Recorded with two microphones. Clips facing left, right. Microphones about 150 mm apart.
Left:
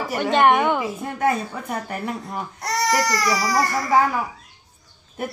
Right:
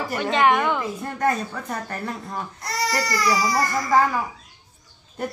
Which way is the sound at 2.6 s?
70° left (ahead or behind).